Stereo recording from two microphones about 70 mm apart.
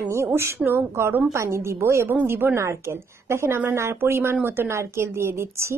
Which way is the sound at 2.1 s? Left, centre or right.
Right.